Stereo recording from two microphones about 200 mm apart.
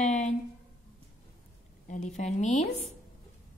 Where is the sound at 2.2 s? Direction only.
35° left (ahead or behind).